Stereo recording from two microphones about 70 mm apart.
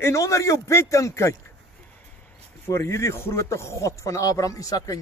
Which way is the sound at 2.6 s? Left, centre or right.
Left.